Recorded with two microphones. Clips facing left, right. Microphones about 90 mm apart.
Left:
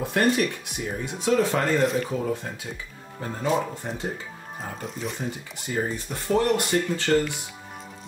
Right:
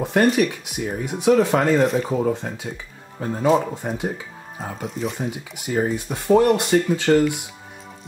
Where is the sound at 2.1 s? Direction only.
20° right (ahead or behind).